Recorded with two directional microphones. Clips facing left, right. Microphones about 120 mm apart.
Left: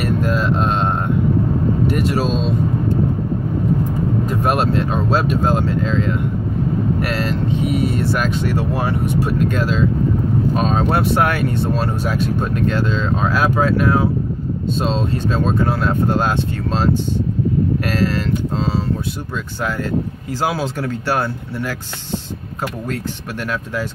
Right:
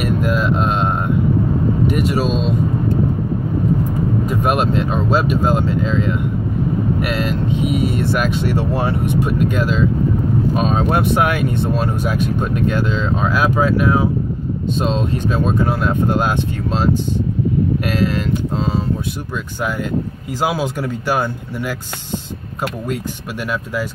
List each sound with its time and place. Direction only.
0.0 s mantra: 15° right (ahead or behind)
1.9 s speech: 15° right (ahead or behind)
4.3 s speech: 15° right (ahead or behind)
20.3 s speech: 15° right (ahead or behind)
23.5 s speech: 10° right (ahead or behind)